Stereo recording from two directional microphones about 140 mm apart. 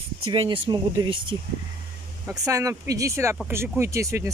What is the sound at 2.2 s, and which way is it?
Speech, 20° right (ahead or behind).